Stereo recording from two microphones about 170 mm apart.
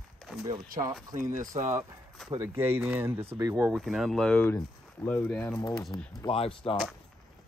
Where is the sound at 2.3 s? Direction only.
15° right (ahead or behind).